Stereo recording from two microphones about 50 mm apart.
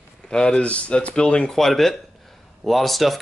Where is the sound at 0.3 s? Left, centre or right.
Centre.